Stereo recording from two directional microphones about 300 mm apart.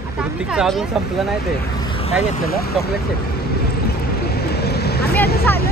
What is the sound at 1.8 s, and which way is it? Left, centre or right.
Vehicle, centre.